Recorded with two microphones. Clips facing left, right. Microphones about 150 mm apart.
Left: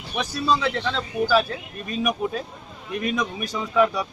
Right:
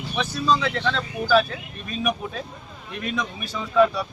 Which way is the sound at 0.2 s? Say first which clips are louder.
Even; 5° left (ahead or behind).